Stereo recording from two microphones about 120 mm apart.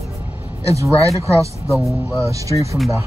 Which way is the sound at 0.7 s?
25° right (ahead or behind).